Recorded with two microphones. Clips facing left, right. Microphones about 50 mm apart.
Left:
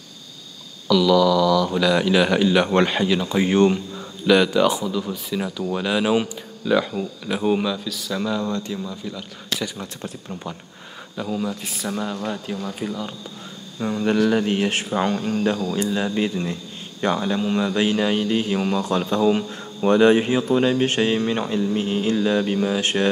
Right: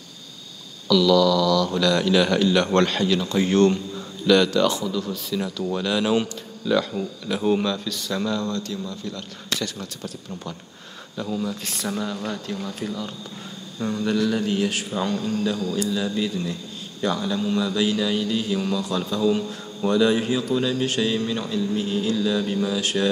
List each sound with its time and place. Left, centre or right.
0.8 s speech: centre
11.1 s speech: centre
11.6 s speech: centre
14.0 s a man's voice: left